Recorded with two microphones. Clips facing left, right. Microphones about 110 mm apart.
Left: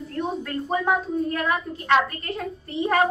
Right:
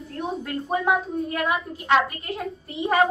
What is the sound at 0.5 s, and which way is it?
A woman's voice, 5° right (ahead or behind).